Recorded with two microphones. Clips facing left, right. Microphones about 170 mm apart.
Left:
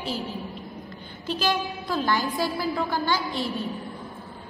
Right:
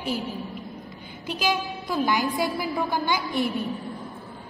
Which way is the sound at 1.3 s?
10° right (ahead or behind).